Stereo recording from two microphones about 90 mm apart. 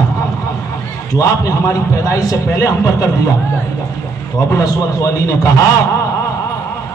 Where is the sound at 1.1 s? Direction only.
40° left (ahead or behind).